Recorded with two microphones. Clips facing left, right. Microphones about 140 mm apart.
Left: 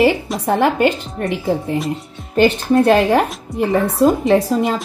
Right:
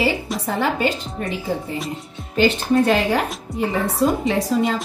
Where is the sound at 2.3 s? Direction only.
55° left (ahead or behind).